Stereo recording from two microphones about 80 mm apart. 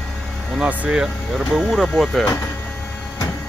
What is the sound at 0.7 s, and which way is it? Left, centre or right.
Speech, centre.